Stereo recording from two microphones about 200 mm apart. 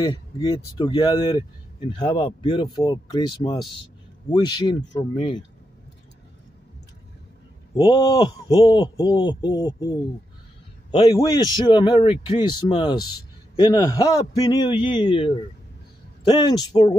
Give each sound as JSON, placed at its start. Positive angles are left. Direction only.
{"t": 0.0, "sound": "speech", "side_deg": 20}
{"t": 7.7, "sound": "speech", "side_deg": 25}